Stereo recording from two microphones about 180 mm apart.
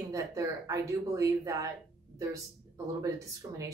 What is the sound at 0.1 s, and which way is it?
Speech, 20° right (ahead or behind).